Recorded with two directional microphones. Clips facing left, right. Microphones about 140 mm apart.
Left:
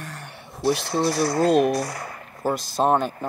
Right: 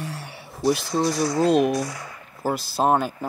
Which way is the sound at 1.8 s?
60° left (ahead or behind).